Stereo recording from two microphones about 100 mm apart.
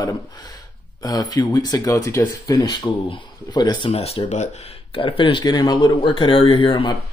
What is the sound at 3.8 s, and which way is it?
Speech, 85° left.